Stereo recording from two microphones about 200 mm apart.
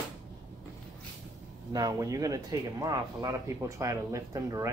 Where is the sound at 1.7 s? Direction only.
15° right (ahead or behind).